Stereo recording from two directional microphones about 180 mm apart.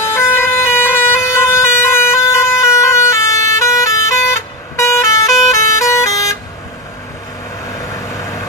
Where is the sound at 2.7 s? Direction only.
15° left (ahead or behind).